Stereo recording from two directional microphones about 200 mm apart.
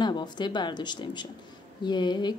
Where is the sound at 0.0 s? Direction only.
20° left (ahead or behind).